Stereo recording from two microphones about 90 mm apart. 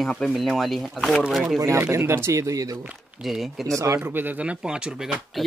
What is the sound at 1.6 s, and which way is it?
Speech, 30° right (ahead or behind).